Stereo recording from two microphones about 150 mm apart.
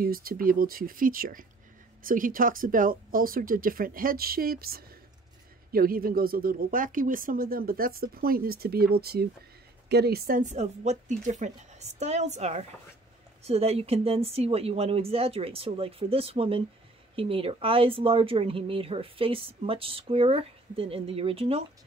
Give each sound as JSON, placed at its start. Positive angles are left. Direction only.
{"t": 0.0, "sound": "speech", "side_deg": -75}
{"t": 5.7, "sound": "speech", "side_deg": -75}